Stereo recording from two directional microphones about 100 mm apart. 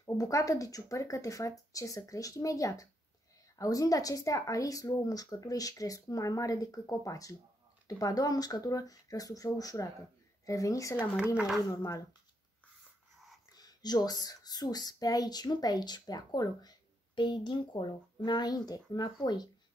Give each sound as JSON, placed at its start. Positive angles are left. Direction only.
{"t": 0.0, "sound": "speech", "side_deg": 35}
{"t": 13.5, "sound": "speech", "side_deg": 40}